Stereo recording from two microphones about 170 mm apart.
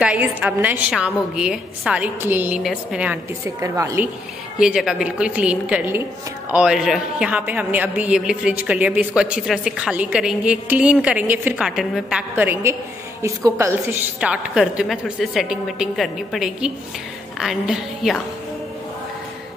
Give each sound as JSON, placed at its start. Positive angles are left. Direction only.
{"t": 0.0, "sound": "a woman's voice", "side_deg": -10}
{"t": 3.6, "sound": "a woman's voice", "side_deg": -15}
{"t": 4.6, "sound": "a woman's voice", "side_deg": -5}